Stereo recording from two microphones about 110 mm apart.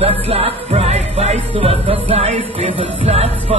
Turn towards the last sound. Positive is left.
turn(degrees=-60)  # may be behind; listen again after turning